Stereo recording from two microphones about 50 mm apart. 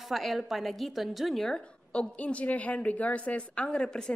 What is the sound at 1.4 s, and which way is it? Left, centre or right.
A woman's voice, centre.